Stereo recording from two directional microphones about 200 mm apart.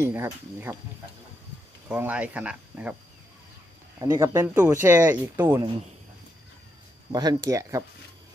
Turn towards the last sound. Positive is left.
turn(degrees=-15)  # may be behind; listen again after turning